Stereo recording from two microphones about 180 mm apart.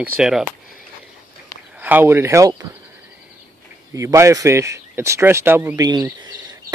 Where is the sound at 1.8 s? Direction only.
10° right (ahead or behind).